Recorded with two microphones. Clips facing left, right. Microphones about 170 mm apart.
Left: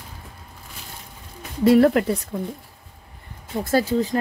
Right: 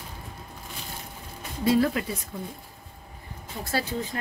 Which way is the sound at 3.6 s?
45° left (ahead or behind).